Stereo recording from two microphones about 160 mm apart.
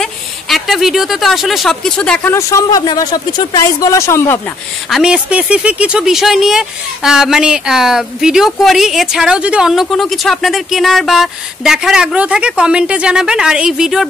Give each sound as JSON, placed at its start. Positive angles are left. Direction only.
{"t": 0.0, "sound": "speech", "side_deg": 0}
{"t": 2.3, "sound": "speech", "side_deg": 20}
{"t": 4.8, "sound": "speech", "side_deg": 0}